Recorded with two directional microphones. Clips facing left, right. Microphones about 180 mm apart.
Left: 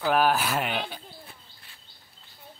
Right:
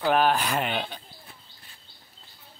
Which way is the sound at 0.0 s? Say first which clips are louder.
Right 1 dB; 5° left (ahead or behind).